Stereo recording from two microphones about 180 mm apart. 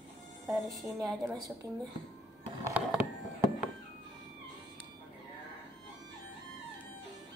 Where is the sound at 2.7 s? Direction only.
10° right (ahead or behind).